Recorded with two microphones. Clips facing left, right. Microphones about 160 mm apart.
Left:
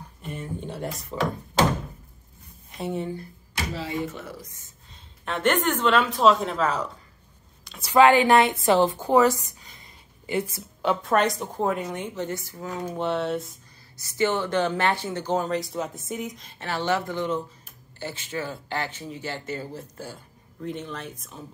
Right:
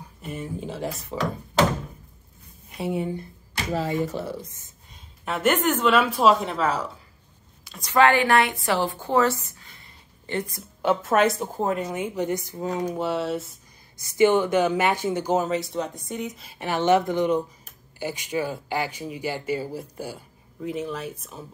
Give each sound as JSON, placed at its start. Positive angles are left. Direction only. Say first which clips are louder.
{"t": 0.2, "sound": "a woman's voice", "louder": "right 2 dB", "side_deg": -5}
{"t": 2.8, "sound": "speech", "louder": "right 2 dB", "side_deg": -10}
{"t": 3.7, "sound": "speech", "louder": "right 7 dB", "side_deg": -45}
{"t": 5.2, "sound": "speech", "louder": "right 1 dB", "side_deg": -10}
{"t": 7.8, "sound": "a woman's voice", "louder": "left 2 dB", "side_deg": 15}
{"t": 12.9, "sound": "a woman's voice", "louder": "even", "side_deg": -5}
{"t": 14.0, "sound": "speech", "louder": "right 6 dB", "side_deg": -15}